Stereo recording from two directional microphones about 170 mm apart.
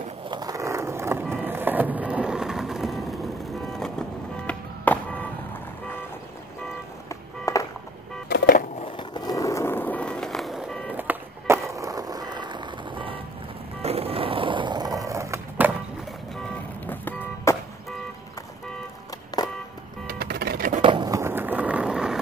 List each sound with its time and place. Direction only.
0.3 s a sound: 20° right (ahead or behind); by 3.9 s centre (ahead or behind)
4.5 s music: 10° left (ahead or behind)
7.1 s vehicle: 20° left (ahead or behind)
8.3 s skateboard: 55° left (ahead or behind)
8.8 s skateboard: 25° left (ahead or behind); by 10.9 s centre (ahead or behind)
10.9 s vehicle: 10° right (ahead or behind); by 13.2 s 30° right (ahead or behind)
13.8 s skateboard: 35° right (ahead or behind); by 15.7 s 15° right (ahead or behind)
16.4 s vehicle: 10° left (ahead or behind)
20.1 s music: 70° right (ahead or behind)
20.8 s skateboard: 25° right (ahead or behind); by 22.2 s 5° right (ahead or behind)